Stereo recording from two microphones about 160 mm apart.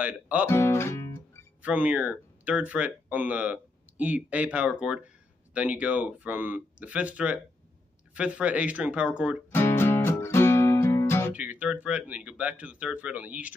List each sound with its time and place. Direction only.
0.0 s speech: 10° right (ahead or behind)
0.5 s guitar: 15° left (ahead or behind)
1.6 s speech: 10° right (ahead or behind)
9.5 s music: 15° left (ahead or behind)
11.3 s speech: 10° right (ahead or behind)